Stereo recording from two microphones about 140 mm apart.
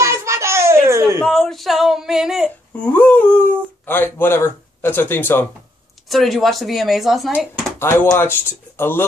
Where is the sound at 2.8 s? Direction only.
15° left (ahead or behind).